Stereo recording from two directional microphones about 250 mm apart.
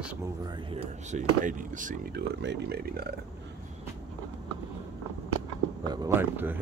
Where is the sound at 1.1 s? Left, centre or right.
Right.